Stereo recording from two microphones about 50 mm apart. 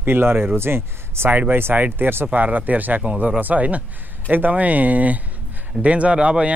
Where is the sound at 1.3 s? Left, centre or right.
Right.